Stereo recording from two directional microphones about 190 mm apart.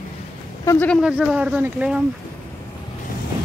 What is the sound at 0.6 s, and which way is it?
Speech, 10° left (ahead or behind).